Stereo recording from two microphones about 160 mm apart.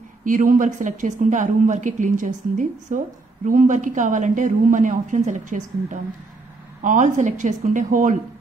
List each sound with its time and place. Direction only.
0.2 s a woman's voice: 55° right (ahead or behind)